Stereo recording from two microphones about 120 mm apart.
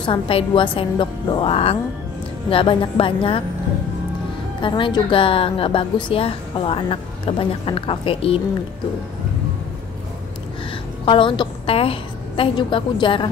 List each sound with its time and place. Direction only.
0.0 s a woman's voice: 45° left (ahead or behind)
4.6 s a woman's voice: 45° left (ahead or behind)
11.1 s a woman's voice: 45° left (ahead or behind)